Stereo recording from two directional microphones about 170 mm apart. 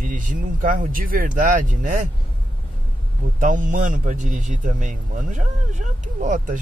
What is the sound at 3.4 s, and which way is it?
Speech, 50° right (ahead or behind).